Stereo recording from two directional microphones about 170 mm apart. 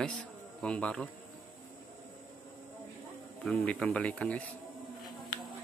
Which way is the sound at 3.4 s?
5° left (ahead or behind).